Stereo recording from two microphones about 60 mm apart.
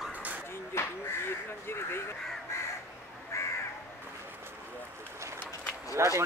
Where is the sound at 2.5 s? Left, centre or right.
Left.